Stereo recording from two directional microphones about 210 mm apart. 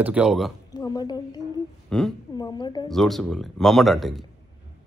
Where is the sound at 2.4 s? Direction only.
20° left (ahead or behind).